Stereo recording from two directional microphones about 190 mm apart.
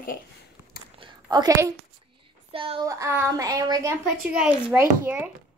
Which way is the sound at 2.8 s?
15° right (ahead or behind).